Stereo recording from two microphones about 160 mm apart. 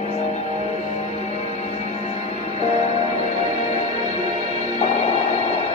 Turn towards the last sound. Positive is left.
turn(degrees=45)  # may be behind; listen again after turning